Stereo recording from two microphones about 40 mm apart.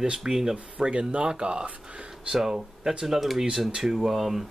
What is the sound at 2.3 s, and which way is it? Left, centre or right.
Speech, centre.